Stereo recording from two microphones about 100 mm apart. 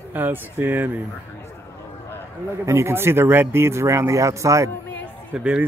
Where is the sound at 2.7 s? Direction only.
25° right (ahead or behind).